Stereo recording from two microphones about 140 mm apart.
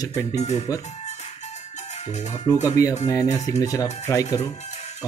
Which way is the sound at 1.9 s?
50° left (ahead or behind).